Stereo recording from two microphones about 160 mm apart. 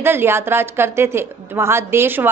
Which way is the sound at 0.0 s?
15° right (ahead or behind).